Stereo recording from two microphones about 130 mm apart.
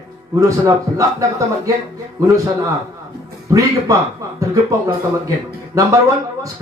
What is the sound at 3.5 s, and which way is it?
Speech, 25° right (ahead or behind).